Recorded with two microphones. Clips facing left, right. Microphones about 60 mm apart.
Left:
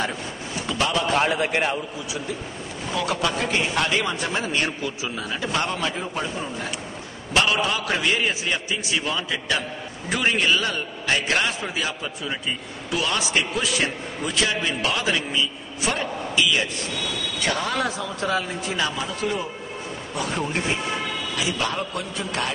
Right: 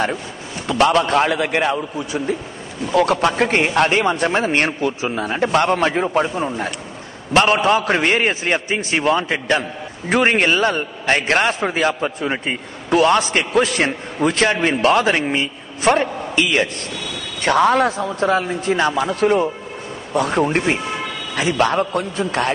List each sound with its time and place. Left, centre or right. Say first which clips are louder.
0.7 s a man's voice: right 8 dB; right